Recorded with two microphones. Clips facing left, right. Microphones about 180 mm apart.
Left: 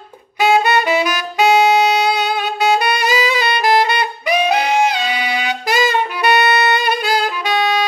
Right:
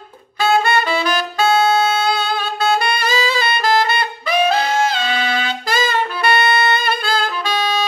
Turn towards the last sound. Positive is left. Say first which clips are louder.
# left 3 dB
turn(degrees=15)  # may be behind; listen again after turning